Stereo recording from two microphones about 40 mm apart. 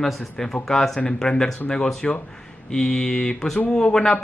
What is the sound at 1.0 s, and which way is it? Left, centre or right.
A man's voice, left.